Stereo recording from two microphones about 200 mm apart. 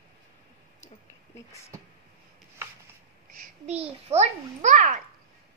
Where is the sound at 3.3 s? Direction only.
35° right (ahead or behind).